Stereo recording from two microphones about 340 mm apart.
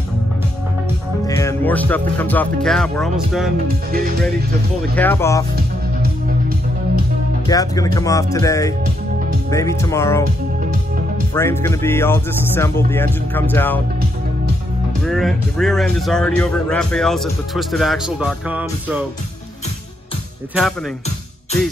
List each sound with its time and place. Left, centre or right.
1.2 s speech: centre
3.6 s music: right
4.9 s speech: centre
7.4 s speech: centre
11.3 s speech: centre
15.0 s speech: centre